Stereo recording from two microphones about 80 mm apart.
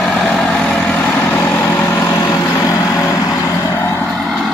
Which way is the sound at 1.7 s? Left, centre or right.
Left.